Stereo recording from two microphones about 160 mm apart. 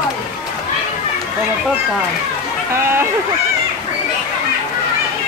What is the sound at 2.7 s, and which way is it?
Speech, 15° right (ahead or behind).